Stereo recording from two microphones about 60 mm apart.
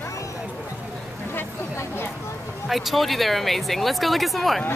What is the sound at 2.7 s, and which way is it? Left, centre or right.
Speech, centre.